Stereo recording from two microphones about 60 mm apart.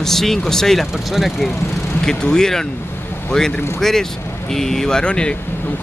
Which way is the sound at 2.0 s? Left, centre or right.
Centre.